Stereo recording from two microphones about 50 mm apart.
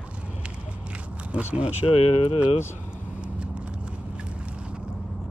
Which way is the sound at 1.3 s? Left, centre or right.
Right.